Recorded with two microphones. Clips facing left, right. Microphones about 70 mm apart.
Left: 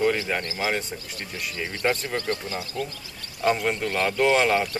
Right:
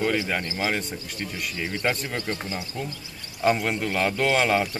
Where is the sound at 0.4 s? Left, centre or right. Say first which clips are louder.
Even; centre.